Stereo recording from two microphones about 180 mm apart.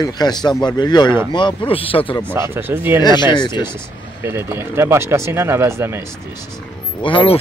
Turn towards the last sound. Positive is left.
turn(degrees=30)  # may be behind; listen again after turning